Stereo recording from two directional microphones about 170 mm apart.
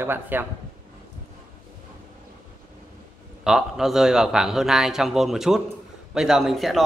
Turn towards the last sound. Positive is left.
turn(degrees=0)  # may be behind; listen again after turning